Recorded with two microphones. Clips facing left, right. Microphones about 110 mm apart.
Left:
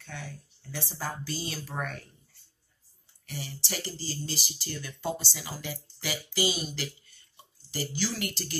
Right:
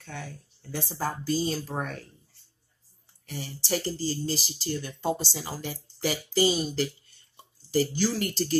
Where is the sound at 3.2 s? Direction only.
45° right (ahead or behind).